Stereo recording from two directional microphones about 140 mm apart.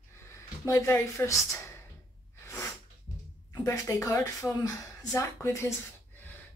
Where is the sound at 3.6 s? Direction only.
25° left (ahead or behind).